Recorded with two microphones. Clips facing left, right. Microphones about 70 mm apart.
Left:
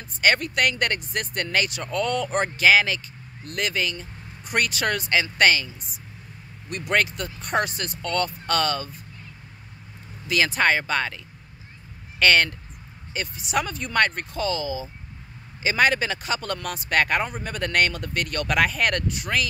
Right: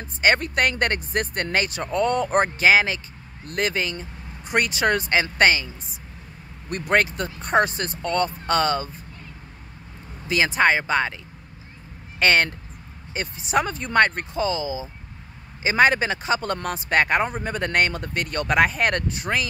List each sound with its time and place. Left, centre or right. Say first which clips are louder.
0.0 s speech: right 1 dB; right
6.7 s speech: right 3 dB; right
10.2 s speech: right 2 dB; right
12.2 s speech: even; right